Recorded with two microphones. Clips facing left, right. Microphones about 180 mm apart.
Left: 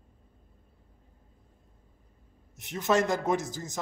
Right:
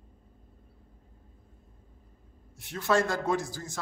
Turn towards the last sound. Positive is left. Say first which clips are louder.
# left 1 dB
turn(degrees=20)  # may be behind; listen again after turning